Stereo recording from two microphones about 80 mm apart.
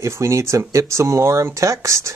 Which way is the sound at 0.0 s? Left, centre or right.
Right.